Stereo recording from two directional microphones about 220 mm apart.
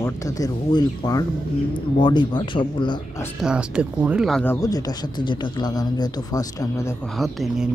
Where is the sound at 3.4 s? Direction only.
5° right (ahead or behind).